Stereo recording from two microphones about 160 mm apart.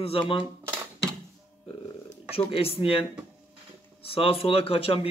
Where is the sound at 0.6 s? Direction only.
15° right (ahead or behind).